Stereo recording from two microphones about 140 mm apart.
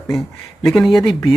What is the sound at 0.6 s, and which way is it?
Speech, 5° left (ahead or behind).